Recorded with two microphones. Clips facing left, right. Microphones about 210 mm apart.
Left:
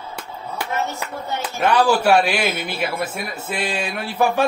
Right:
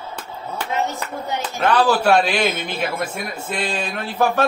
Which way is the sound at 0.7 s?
15° right (ahead or behind).